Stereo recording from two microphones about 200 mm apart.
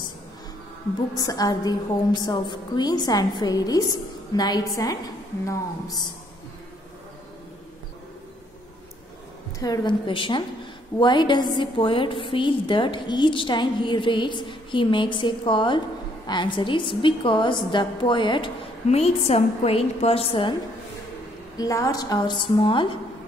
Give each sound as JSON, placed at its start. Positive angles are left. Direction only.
{"t": 1.1, "sound": "a woman's voice", "side_deg": 20}
{"t": 9.6, "sound": "a woman's voice", "side_deg": 20}
{"t": 21.5, "sound": "a woman's voice", "side_deg": 15}